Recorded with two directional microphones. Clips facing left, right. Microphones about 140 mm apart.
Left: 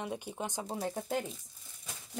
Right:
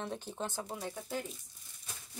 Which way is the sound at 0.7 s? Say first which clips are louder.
Left 5 dB; 40° left (ahead or behind).